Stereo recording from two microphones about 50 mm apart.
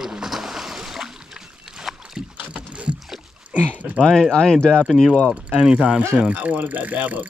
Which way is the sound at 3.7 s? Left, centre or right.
Right.